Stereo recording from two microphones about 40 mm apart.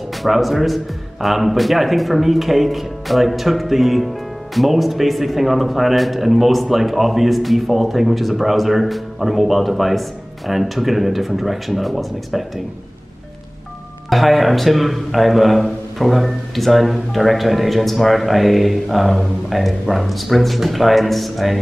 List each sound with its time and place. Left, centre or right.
0.2 s speech: centre
14.1 s speech: centre